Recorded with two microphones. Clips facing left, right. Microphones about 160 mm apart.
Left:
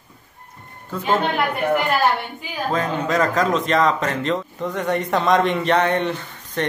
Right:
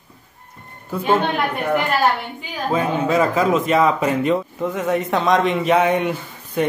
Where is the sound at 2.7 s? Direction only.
10° right (ahead or behind).